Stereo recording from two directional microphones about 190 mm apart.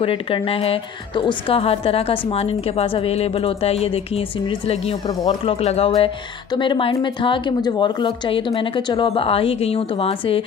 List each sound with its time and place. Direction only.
0.0 s a woman's voice: 30° left (ahead or behind)